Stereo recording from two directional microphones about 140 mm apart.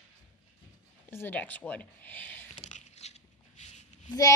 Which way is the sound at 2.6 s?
55° left (ahead or behind).